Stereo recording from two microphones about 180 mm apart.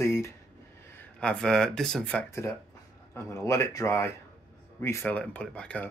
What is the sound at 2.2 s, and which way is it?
Speech, 15° left (ahead or behind).